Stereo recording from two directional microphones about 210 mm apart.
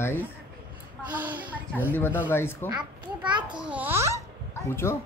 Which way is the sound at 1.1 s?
10° right (ahead or behind).